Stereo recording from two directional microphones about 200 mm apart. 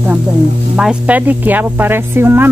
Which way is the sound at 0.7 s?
5° right (ahead or behind).